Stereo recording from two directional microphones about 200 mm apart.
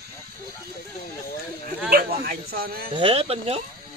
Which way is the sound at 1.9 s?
50° right (ahead or behind).